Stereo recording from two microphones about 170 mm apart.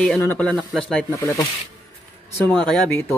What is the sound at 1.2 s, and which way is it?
Speech, 20° left (ahead or behind).